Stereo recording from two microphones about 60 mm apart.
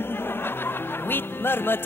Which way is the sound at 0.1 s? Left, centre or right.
Left.